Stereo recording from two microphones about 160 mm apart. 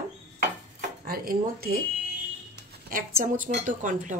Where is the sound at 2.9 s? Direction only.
60° right (ahead or behind).